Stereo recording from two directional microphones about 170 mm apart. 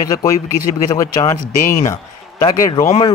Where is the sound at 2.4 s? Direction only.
25° left (ahead or behind).